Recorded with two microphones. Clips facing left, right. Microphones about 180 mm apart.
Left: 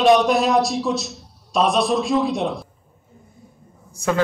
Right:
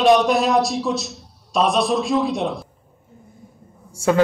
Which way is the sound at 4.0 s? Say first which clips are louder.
Right 4 dB; 25° right (ahead or behind).